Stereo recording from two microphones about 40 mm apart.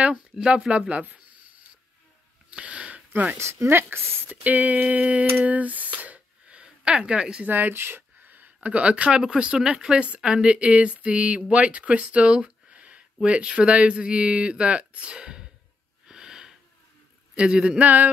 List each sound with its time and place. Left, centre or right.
0.5 s speech: right
2.5 s a sound: right
3.5 s speech: right
4.4 s speech: right
5.4 s a sound: right
6.6 s speech: right
7.4 s speech: right
7.7 s a sound: right
8.6 s speech: right
16.1 s wheeze: centre
17.4 s speech: right
17.8 s speech: right